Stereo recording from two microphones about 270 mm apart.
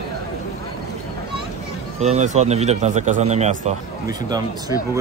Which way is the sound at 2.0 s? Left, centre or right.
Right.